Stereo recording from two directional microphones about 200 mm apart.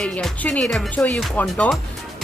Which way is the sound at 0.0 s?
5° left (ahead or behind).